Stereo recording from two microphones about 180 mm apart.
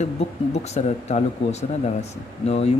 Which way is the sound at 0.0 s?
35° left (ahead or behind).